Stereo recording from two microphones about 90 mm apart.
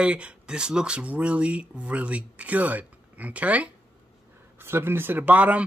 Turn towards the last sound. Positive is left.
turn(degrees=-15)  # may be behind; listen again after turning